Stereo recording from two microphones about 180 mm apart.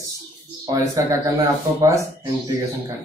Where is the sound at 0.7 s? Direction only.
20° right (ahead or behind).